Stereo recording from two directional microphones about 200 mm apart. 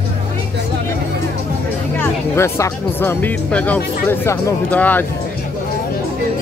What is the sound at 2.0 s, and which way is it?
Speech, 10° left (ahead or behind).